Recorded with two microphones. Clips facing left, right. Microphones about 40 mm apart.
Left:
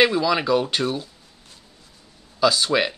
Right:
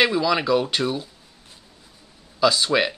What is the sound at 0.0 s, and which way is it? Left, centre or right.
Speech, centre.